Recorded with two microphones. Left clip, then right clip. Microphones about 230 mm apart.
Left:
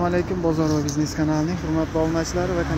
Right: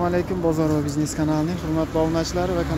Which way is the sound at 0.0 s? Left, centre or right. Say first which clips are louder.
Even; centre.